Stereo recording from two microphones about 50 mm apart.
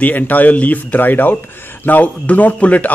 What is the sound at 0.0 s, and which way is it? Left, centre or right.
Speech, left.